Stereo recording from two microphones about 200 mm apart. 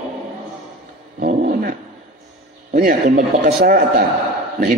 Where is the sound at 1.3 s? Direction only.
45° right (ahead or behind).